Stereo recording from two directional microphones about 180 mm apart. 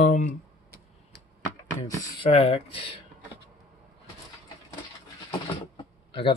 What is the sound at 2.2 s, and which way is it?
Speech, 35° left (ahead or behind).